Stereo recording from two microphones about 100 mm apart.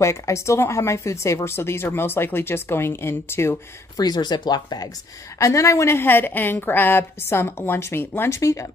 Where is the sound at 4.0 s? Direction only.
45° left (ahead or behind).